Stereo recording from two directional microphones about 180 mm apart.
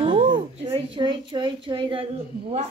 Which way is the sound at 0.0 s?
30° right (ahead or behind).